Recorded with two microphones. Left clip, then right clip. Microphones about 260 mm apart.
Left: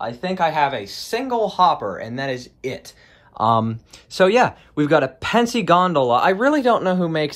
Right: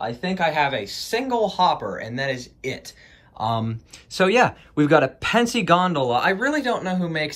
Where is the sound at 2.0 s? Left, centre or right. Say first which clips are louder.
Left 1 dB; centre.